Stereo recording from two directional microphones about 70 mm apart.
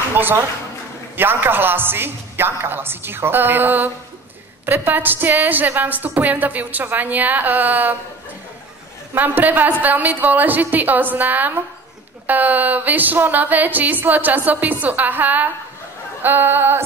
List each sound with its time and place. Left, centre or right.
0.1 s a sound: right
1.1 s a woman's voice: right
9.1 s a woman's voice: right